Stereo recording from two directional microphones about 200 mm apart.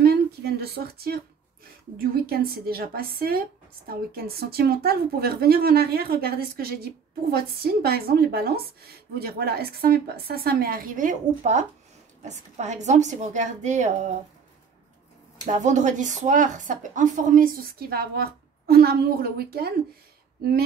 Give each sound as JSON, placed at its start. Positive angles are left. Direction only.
{"t": 0.0, "sound": "a sound", "side_deg": -50}
{"t": 2.0, "sound": "speech", "side_deg": -50}
{"t": 15.4, "sound": "speech", "side_deg": -35}